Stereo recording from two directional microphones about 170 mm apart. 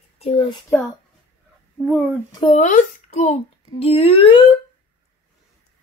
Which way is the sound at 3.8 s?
35° left (ahead or behind).